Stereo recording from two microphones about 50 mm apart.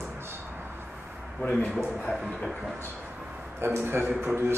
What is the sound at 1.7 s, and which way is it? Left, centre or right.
Speech, centre.